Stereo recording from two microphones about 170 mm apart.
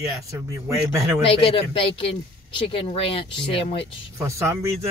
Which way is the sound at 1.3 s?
30° left (ahead or behind).